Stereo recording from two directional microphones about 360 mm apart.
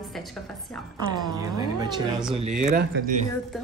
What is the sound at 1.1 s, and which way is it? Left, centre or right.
Speech, centre.